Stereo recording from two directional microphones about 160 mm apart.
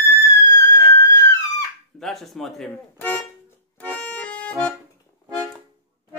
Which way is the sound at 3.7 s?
10° left (ahead or behind).